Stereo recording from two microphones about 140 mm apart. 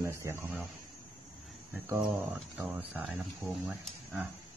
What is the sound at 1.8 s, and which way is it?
Speech, 15° right (ahead or behind).